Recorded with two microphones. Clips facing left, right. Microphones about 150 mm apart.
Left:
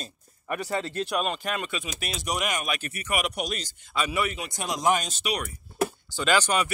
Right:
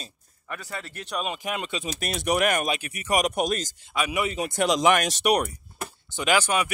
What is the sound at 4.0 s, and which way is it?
Speech, 15° right (ahead or behind).